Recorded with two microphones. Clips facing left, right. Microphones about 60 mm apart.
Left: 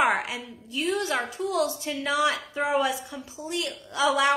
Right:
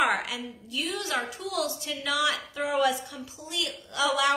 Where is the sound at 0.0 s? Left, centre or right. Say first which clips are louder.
Left 2 dB; left.